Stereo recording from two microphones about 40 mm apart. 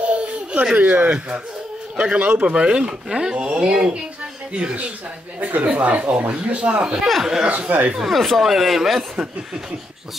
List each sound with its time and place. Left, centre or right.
0.0 s a sound: right
0.7 s speech: right
5.4 s speech: right
7.9 s speech: centre